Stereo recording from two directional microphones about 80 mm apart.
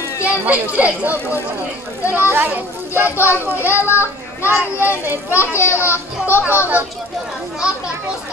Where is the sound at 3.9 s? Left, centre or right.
Left.